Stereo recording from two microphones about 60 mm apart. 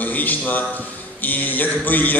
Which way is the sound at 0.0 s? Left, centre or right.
Left.